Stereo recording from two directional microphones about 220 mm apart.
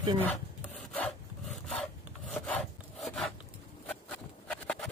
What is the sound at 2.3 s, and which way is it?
Wood, centre (ahead or behind).